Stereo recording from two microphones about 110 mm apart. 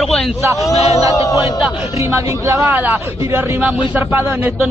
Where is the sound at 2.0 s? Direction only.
30° right (ahead or behind).